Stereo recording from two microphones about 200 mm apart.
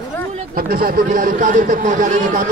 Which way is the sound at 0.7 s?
45° right (ahead or behind).